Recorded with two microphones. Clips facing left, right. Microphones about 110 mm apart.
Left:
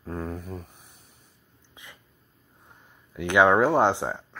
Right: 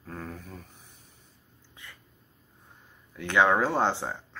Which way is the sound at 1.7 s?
15° left (ahead or behind).